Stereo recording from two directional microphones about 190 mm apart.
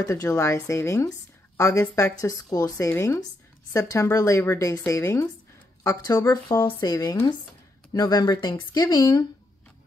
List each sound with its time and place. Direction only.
0.0 s speech: 20° left (ahead or behind)